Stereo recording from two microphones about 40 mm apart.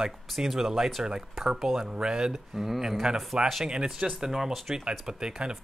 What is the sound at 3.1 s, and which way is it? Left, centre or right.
Speech, centre.